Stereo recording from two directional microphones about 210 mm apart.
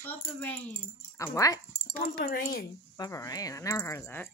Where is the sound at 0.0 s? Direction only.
10° left (ahead or behind).